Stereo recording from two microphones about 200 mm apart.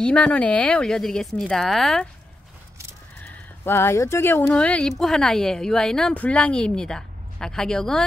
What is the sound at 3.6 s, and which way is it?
Speech, 10° left (ahead or behind).